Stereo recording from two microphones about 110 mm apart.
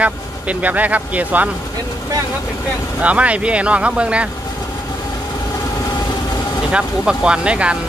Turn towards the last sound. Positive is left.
turn(degrees=-10)  # may be behind; listen again after turning